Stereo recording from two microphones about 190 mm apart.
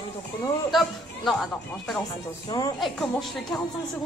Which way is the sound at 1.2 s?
Centre (ahead or behind).